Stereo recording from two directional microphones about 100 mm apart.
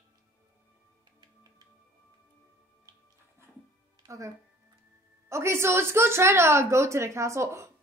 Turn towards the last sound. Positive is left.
turn(degrees=-30)  # may be behind; listen again after turning